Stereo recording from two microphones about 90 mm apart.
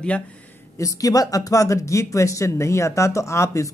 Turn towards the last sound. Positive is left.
turn(degrees=35)  # may be behind; listen again after turning